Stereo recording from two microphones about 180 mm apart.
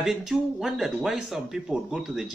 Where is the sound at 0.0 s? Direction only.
Centre (ahead or behind).